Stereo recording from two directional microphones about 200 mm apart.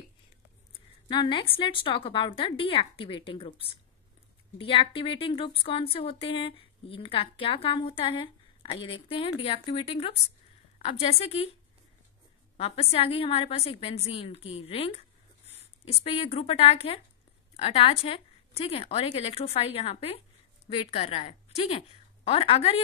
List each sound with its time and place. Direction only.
0.7 s a sound: 25° left (ahead or behind)
1.6 s a woman's voice: 25° left (ahead or behind)
12.5 s a woman's voice: 30° left (ahead or behind)